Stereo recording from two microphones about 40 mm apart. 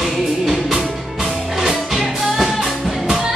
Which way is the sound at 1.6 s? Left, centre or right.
Centre.